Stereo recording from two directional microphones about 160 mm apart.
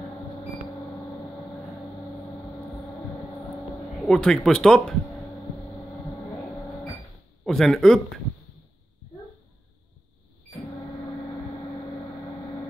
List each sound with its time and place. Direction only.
4.0 s speech: centre (ahead or behind)
7.4 s speech: centre (ahead or behind)